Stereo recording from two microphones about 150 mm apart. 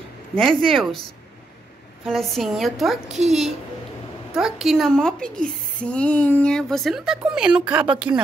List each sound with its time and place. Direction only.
0.4 s speech: 5° left (ahead or behind)
2.0 s speech: centre (ahead or behind)
3.1 s a woman's voice: 50° right (ahead or behind)
4.4 s speech: 5° right (ahead or behind)